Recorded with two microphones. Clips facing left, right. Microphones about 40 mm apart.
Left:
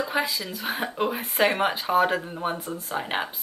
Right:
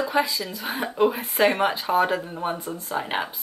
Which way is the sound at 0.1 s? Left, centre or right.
Centre.